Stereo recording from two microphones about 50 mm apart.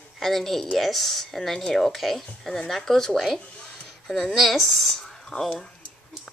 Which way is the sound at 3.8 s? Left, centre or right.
Centre.